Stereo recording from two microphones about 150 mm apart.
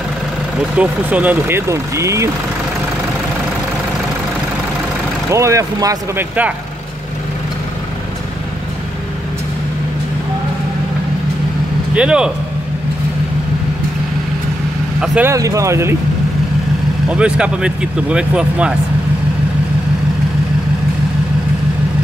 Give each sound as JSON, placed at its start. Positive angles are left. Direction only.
{"t": 0.7, "sound": "speech", "side_deg": -10}
{"t": 5.3, "sound": "speech", "side_deg": -20}
{"t": 11.9, "sound": "speech", "side_deg": -5}
{"t": 15.0, "sound": "speech", "side_deg": -10}
{"t": 15.3, "sound": "speech", "side_deg": -20}
{"t": 17.1, "sound": "speech", "side_deg": -5}